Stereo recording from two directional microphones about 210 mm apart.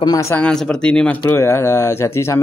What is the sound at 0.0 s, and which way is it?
A man's voice, 15° left (ahead or behind).